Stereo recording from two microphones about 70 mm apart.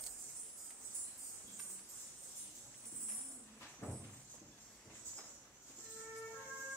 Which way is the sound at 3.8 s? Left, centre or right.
Left.